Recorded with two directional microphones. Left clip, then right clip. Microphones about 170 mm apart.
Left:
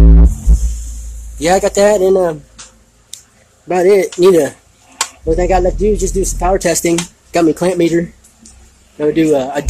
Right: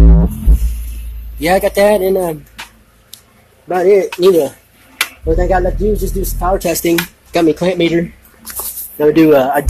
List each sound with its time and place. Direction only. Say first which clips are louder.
1.4 s speech: even; 20° left (ahead or behind)
3.1 s a sound: left 4 dB; 35° left (ahead or behind)
3.6 s speech: even; 45° left (ahead or behind); by 7.9 s 15° left (ahead or behind)
8.9 s speech: right 4 dB; 5° left (ahead or behind)